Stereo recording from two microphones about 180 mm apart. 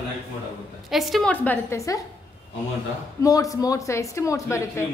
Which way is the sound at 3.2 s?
20° left (ahead or behind).